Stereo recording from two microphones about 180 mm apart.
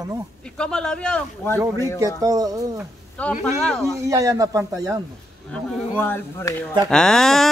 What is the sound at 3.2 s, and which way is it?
Speech, 5° left (ahead or behind).